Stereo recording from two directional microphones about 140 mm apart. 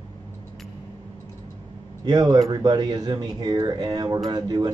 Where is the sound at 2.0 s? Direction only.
25° right (ahead or behind).